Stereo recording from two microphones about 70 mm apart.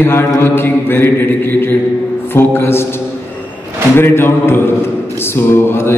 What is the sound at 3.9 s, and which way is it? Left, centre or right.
Mantra, left.